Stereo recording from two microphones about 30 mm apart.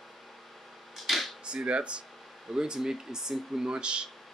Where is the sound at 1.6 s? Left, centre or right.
Right.